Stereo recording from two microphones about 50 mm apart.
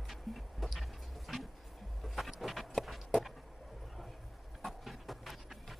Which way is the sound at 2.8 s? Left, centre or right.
Centre.